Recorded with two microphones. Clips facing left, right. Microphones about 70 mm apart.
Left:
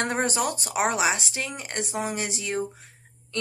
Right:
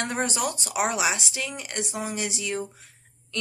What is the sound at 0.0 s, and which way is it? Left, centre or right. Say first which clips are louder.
A woman's voice: left 2 dB; left.